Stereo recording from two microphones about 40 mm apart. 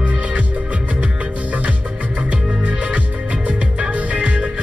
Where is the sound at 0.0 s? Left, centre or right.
Right.